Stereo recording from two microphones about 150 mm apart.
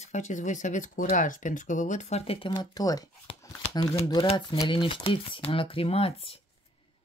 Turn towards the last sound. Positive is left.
turn(degrees=40)  # may be behind; listen again after turning